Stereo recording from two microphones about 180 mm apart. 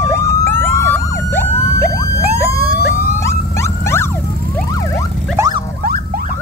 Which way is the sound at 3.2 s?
15° left (ahead or behind).